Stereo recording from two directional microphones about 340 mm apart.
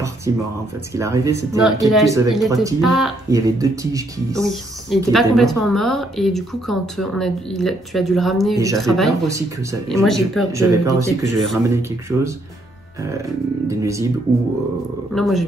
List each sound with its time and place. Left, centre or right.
0.3 s a woman's voice: centre
13.7 s speech: centre
15.1 s a woman's voice: centre